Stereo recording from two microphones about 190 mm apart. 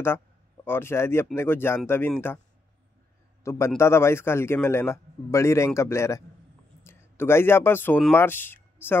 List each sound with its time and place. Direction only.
0.7 s a man's voice: 10° left (ahead or behind)
3.4 s a man's voice: 15° left (ahead or behind)